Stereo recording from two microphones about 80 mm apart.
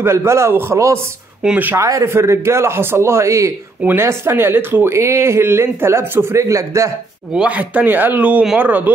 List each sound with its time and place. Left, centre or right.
0.0 s speech: right
6.3 s speech: right
7.3 s speech: centre